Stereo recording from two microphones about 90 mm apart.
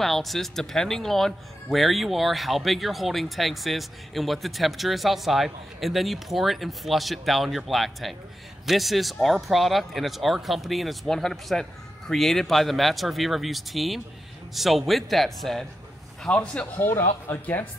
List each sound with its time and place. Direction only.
0.0 s speech: centre (ahead or behind)
16.8 s speech: 30° left (ahead or behind)